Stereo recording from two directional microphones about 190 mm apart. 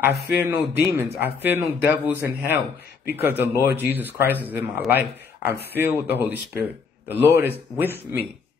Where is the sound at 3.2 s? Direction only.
10° right (ahead or behind).